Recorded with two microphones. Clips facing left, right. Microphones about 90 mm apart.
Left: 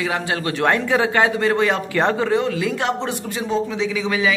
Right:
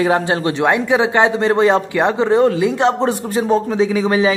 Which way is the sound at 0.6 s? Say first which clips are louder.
Right 2 dB; 15° right (ahead or behind).